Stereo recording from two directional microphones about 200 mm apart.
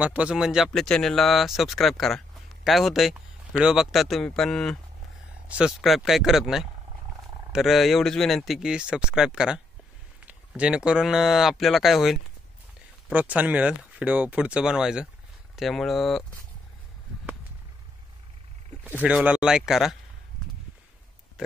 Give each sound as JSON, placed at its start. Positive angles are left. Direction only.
{"t": 0.0, "sound": "speech", "side_deg": -5}
{"t": 19.0, "sound": "speech", "side_deg": -5}
{"t": 21.4, "sound": "pig", "side_deg": -5}